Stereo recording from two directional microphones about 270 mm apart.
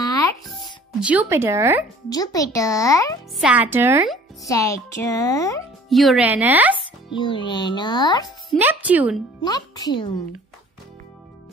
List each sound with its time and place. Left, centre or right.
0.0 s music: centre
1.0 s a woman's voice: centre
2.0 s a child's voice: centre
3.3 s speech: centre
4.4 s a child's voice: centre
5.9 s speech: centre
7.1 s a child's voice: centre
8.5 s speech: centre
9.4 s a child's voice: centre